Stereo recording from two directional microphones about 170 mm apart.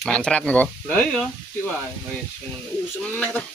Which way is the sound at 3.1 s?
10° left (ahead or behind).